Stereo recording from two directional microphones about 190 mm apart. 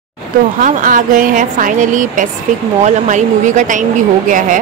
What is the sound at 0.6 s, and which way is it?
A woman's voice, 45° right (ahead or behind).